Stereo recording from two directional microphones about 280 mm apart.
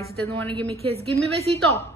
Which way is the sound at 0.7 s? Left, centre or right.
Right.